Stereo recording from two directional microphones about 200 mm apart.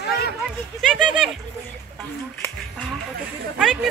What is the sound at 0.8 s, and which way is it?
Speech, centre (ahead or behind).